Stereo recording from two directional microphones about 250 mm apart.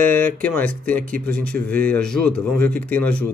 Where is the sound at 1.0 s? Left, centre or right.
Right.